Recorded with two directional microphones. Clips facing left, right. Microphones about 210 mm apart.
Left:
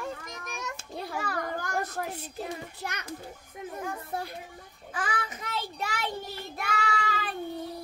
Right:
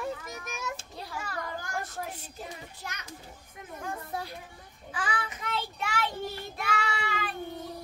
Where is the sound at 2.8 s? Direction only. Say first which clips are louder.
Left 5 dB; 60° left (ahead or behind).